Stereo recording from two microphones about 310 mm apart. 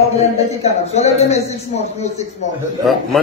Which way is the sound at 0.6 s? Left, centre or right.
Centre.